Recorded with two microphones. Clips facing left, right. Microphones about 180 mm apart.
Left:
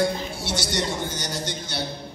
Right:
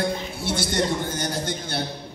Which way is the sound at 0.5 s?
55° right (ahead or behind).